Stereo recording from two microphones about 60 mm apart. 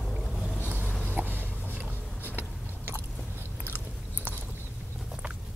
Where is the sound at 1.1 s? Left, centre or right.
Right.